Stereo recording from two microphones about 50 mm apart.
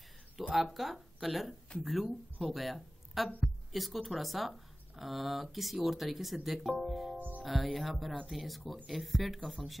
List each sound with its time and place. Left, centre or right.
0.7 s speech: centre
7.2 s music: right
7.4 s speech: centre